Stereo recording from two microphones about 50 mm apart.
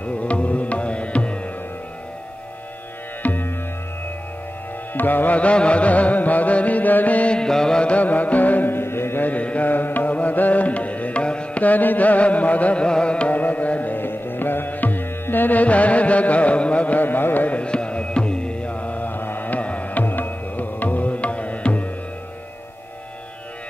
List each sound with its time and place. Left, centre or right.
0.0 s music: left
3.2 s music: left
4.9 s music: left
7.3 s music: centre
7.8 s music: left
9.3 s mantra: left
9.7 s music: left
12.8 s carnatic music: centre
13.3 s music: left
17.0 s carnatic music: left
17.6 s music: left